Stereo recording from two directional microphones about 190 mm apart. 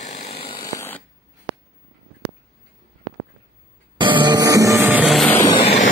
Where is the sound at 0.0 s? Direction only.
30° left (ahead or behind); by 1.0 s 15° left (ahead or behind).